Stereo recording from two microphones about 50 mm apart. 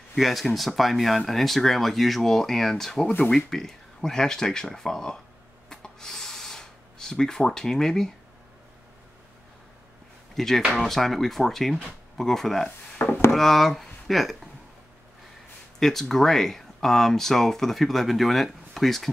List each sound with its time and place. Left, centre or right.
0.1 s speech: centre
5.7 s a sound: centre
10.3 s speech: centre
12.6 s wood: left
13.3 s speech: centre
15.8 s speech: centre